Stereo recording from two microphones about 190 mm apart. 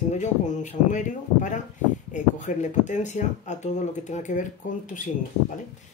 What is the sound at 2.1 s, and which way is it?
Speech, 40° left (ahead or behind).